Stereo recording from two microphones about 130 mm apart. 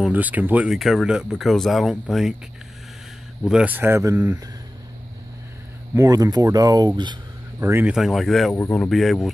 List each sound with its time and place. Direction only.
0.0 s speech: 10° right (ahead or behind)
0.7 s speech: centre (ahead or behind)
3.4 s speech: 10° right (ahead or behind)
5.9 s speech: 25° right (ahead or behind)
7.8 s speech: centre (ahead or behind)